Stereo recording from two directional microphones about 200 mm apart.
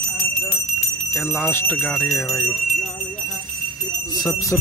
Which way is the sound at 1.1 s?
5° left (ahead or behind).